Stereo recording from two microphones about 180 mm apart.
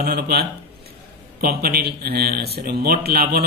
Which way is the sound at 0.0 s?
60° right (ahead or behind).